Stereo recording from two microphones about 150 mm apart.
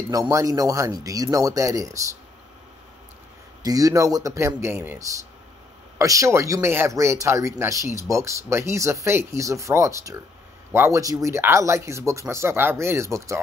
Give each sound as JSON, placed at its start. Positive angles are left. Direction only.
{"t": 0.1, "sound": "speech", "side_deg": -20}
{"t": 3.6, "sound": "speech", "side_deg": -25}